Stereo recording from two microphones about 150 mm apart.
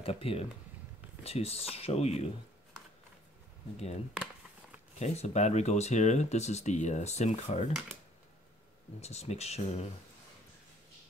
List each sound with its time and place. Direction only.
0.0 s speech: 40° left (ahead or behind)
3.7 s speech: 45° left (ahead or behind)
9.0 s speech: 45° left (ahead or behind)